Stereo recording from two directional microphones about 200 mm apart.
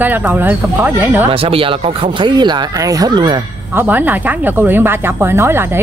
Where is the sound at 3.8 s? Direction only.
10° right (ahead or behind).